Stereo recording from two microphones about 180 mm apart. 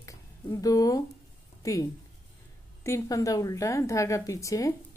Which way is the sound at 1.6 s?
20° left (ahead or behind).